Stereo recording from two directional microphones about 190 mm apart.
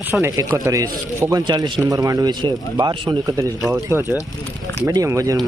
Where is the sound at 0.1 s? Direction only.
15° right (ahead or behind).